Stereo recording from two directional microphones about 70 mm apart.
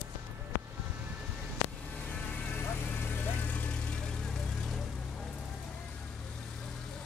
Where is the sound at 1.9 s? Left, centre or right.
Centre.